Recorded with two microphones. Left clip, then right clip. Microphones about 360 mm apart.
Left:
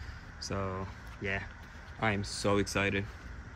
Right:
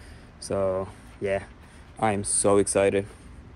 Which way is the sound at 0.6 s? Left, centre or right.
Right.